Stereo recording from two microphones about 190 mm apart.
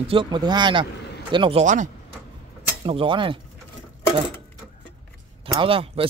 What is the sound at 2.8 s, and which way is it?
Speech, 25° right (ahead or behind).